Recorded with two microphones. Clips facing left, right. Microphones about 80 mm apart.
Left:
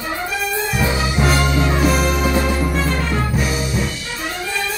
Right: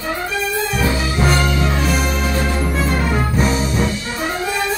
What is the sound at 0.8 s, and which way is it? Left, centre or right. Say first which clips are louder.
Music: even; left.